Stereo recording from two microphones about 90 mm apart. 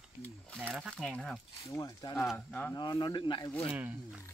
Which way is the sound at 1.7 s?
40° left (ahead or behind).